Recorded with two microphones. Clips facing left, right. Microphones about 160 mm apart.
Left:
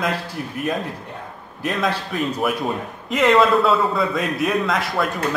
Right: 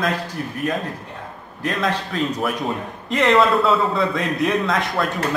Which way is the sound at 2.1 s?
10° left (ahead or behind).